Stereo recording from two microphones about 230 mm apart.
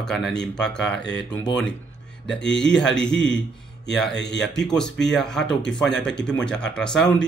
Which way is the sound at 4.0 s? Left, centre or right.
Left.